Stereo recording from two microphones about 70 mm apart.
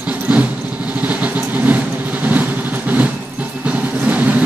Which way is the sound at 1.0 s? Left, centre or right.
Right.